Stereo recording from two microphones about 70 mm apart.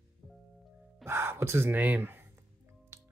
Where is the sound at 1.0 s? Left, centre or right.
Right.